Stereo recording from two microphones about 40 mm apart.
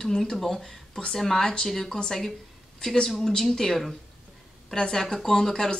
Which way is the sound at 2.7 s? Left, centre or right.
Centre.